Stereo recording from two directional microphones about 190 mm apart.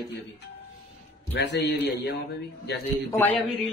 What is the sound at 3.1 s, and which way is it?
Speech, 10° left (ahead or behind).